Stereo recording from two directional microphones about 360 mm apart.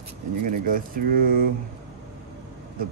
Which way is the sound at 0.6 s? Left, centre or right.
Right.